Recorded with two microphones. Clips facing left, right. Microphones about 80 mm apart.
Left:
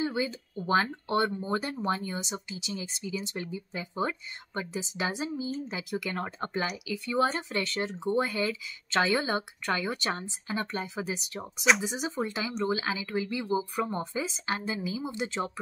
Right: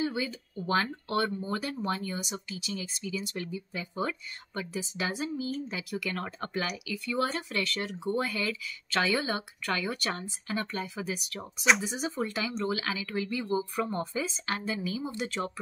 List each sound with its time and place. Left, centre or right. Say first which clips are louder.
0.0 s speech: left 1 dB; left